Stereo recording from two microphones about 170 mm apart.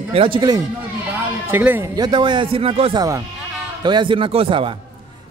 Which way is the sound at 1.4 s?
10° right (ahead or behind).